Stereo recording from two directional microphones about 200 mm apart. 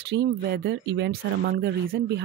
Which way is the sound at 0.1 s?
65° right (ahead or behind).